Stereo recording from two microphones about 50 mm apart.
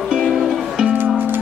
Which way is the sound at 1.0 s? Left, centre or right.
Right.